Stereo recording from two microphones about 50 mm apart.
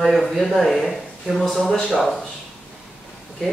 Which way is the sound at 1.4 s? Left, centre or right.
Centre.